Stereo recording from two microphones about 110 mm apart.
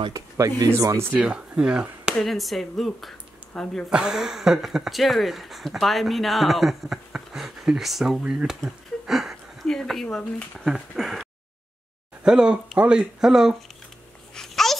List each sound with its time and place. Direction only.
0.1 s speech: 30° right (ahead or behind)
1.5 s chop: 10° right (ahead or behind)
2.1 s speech: centre (ahead or behind)
8.6 s a sound: 5° right (ahead or behind)
10.6 s speech: 5° right (ahead or behind)
14.3 s a sound: 5° left (ahead or behind)